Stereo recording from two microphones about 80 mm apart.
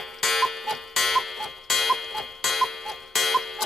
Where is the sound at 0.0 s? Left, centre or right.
Centre.